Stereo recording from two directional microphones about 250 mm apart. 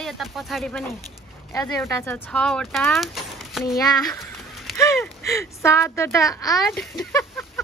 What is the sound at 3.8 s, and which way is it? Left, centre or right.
Speech, centre.